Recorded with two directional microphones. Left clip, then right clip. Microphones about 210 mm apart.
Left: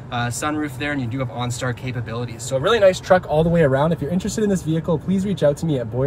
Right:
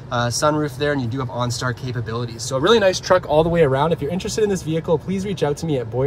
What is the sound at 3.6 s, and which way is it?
Speech, 5° right (ahead or behind).